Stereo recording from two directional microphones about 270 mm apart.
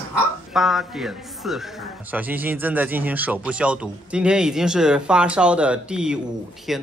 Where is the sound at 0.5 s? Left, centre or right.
Centre.